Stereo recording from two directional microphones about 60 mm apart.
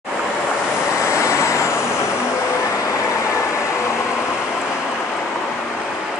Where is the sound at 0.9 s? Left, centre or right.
Left.